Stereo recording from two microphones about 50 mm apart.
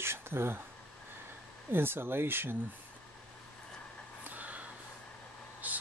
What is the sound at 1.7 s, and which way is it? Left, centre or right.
Speech, right.